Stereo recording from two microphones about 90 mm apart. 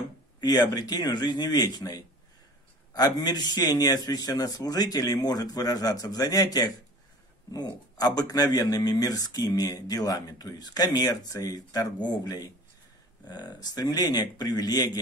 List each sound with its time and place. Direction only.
0.4 s speech: 50° left (ahead or behind)